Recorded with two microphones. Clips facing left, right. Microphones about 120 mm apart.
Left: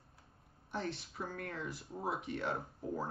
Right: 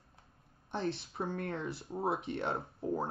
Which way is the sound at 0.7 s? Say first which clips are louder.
Right 4 dB; 25° right (ahead or behind).